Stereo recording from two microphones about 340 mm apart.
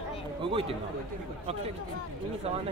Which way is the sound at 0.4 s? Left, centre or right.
Centre.